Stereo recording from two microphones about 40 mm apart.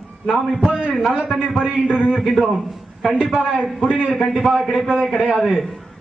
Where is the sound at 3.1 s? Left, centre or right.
Centre.